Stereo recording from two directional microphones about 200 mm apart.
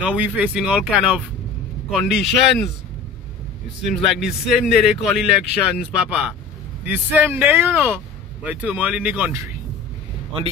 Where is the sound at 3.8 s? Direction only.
Centre (ahead or behind).